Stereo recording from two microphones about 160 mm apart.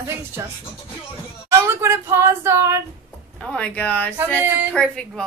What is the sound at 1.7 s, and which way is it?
Female singing, 15° right (ahead or behind).